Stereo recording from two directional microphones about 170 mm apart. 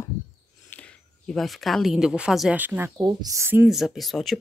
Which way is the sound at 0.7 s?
5° left (ahead or behind).